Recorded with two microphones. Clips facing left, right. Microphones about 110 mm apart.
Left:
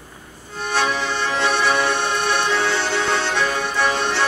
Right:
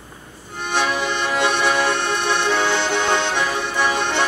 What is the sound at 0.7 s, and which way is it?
Accordion, 20° right (ahead or behind).